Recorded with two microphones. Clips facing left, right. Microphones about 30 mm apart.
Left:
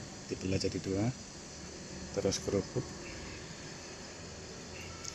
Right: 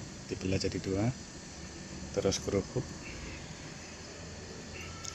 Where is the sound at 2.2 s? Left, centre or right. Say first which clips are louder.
Right 2 dB; right.